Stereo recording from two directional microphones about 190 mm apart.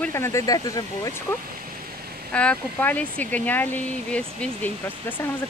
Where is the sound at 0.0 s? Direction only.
15° left (ahead or behind).